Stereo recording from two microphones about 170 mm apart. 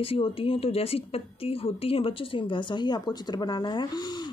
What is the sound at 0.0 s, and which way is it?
A woman's voice, 30° left (ahead or behind).